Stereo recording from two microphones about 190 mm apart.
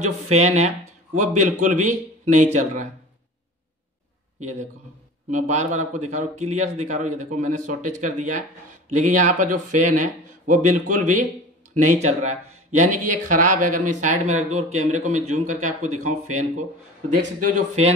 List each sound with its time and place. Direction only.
0.0 s speech: 35° right (ahead or behind)
4.4 s a man's voice: 35° right (ahead or behind)